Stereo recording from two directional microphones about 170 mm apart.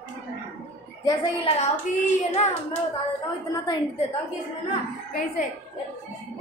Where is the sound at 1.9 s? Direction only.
45° left (ahead or behind).